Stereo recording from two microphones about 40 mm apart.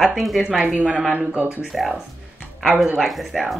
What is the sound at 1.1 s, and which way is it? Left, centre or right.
Speech, right.